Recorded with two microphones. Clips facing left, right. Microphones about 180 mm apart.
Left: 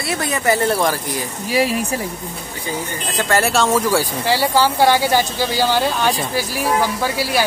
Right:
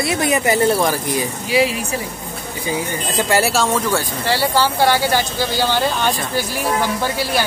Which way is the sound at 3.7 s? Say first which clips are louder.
Left 2 dB; 10° left (ahead or behind).